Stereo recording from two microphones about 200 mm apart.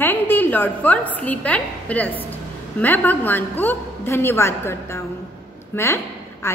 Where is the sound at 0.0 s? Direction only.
10° left (ahead or behind).